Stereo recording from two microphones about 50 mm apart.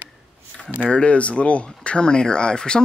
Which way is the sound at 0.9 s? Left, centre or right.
Left.